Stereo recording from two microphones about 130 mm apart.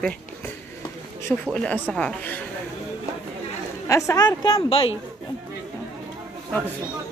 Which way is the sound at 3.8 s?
25° left (ahead or behind).